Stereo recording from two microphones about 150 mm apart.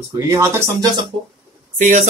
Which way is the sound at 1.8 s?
50° right (ahead or behind).